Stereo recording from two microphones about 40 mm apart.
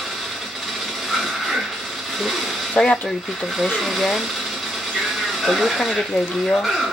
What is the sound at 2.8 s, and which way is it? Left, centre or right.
Speech, left.